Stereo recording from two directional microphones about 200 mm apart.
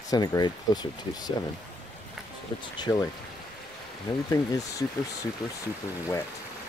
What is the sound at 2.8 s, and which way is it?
Speech, 15° left (ahead or behind).